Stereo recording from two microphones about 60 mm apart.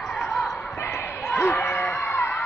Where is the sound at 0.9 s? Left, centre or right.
Left.